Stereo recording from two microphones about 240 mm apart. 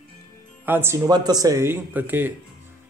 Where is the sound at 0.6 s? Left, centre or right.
Centre.